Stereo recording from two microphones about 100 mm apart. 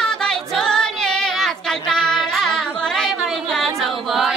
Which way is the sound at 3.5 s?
Centre (ahead or behind).